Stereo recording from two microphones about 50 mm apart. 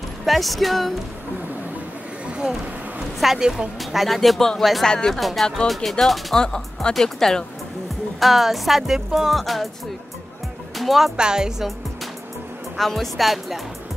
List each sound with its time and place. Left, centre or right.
0.2 s music: centre
2.2 s a sound: centre
3.2 s speech: centre
4.0 s music: centre
4.8 s speech: centre
5.2 s music: centre
6.3 s speech: centre
8.2 s music: centre
10.8 s speech: centre
11.1 s speech: centre
12.7 s music: centre